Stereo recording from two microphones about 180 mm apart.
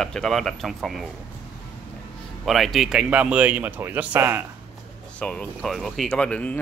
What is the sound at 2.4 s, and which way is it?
Speech, centre (ahead or behind).